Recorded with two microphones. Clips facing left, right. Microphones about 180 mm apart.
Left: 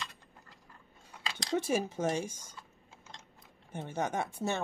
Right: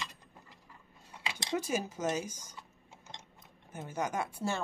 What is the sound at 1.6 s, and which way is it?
Speech, 25° left (ahead or behind).